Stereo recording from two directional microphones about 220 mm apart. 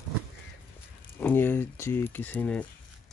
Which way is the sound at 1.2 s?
10° left (ahead or behind).